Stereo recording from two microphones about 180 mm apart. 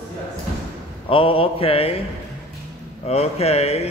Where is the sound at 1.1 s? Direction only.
30° left (ahead or behind).